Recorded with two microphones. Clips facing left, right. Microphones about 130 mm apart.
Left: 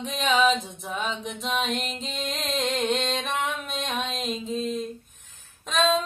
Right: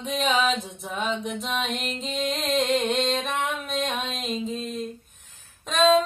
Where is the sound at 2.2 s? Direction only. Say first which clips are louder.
Right 4 dB; centre (ahead or behind).